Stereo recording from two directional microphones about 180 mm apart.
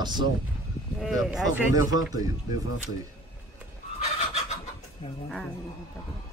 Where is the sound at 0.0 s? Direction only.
25° right (ahead or behind).